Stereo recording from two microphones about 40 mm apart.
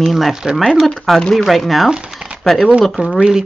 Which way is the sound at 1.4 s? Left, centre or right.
Centre.